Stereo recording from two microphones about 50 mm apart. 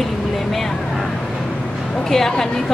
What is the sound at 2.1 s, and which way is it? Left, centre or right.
Speech, centre.